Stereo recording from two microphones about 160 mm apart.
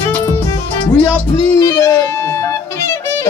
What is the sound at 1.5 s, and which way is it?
Music, 20° left (ahead or behind).